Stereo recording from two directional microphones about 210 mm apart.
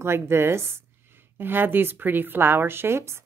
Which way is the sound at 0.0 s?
10° right (ahead or behind).